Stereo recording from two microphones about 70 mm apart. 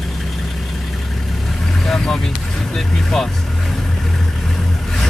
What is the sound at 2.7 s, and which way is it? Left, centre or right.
Speech, centre.